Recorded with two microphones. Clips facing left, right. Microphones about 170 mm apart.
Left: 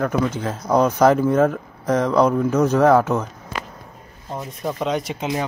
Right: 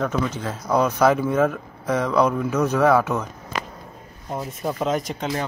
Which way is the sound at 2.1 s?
15° left (ahead or behind).